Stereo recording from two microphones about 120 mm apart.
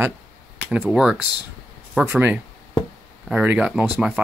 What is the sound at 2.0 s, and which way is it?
Speech, 15° right (ahead or behind).